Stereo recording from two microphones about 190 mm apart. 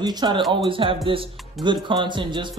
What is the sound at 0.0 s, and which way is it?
Music, 20° right (ahead or behind).